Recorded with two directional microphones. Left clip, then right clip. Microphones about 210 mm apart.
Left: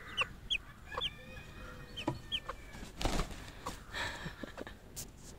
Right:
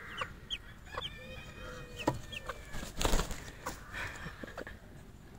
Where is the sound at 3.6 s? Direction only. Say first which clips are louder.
Left 1 dB; 25° left (ahead or behind).